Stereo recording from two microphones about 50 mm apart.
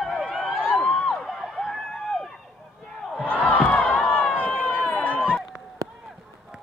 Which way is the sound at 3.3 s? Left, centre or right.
Left.